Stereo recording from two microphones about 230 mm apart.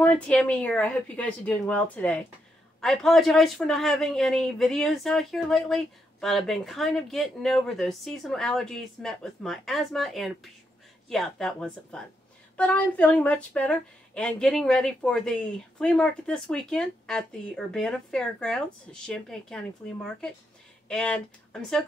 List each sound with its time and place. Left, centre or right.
0.0 s speech: centre